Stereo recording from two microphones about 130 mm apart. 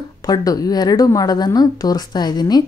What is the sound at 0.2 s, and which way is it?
A woman's voice, 30° left (ahead or behind).